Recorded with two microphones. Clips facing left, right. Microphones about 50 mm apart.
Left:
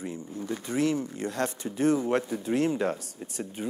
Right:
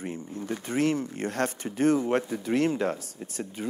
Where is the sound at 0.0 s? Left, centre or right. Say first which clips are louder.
Right 1 dB; right.